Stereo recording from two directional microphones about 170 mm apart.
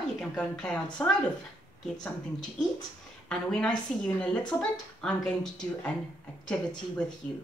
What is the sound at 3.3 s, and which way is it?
A woman's voice, 5° left (ahead or behind).